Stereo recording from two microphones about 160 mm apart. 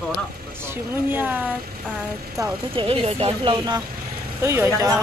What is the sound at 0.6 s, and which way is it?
Speech, 15° right (ahead or behind).